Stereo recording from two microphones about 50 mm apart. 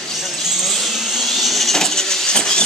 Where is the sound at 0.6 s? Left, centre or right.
Centre.